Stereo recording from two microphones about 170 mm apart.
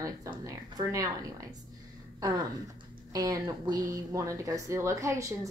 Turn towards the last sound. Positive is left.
turn(degrees=-20)  # may be behind; listen again after turning